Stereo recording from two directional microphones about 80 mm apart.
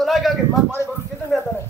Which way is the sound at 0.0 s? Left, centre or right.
Centre.